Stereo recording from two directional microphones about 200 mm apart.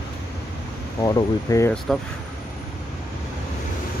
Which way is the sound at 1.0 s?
15° left (ahead or behind).